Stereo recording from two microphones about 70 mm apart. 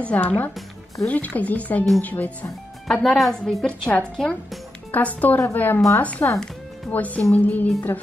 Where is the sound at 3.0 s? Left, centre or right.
Centre.